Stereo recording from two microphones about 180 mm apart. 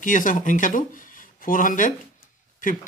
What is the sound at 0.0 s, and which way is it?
Speech, 45° left (ahead or behind).